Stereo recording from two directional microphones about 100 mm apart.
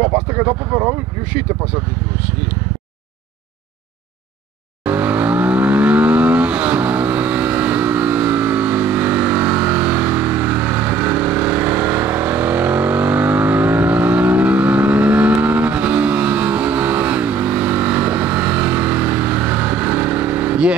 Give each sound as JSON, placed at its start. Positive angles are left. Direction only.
{"t": 0.0, "sound": "speech", "side_deg": -25}
{"t": 4.8, "sound": "vehicle", "side_deg": -15}